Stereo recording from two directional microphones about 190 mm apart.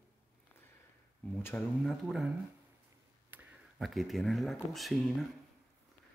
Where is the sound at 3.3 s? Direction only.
Centre (ahead or behind).